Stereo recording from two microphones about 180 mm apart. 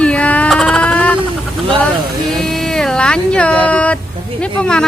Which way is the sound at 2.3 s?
Centre (ahead or behind).